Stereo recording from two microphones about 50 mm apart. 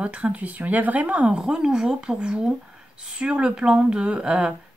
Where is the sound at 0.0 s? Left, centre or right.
Right.